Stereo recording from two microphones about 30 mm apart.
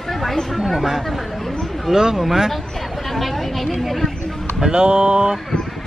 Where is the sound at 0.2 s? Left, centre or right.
Centre.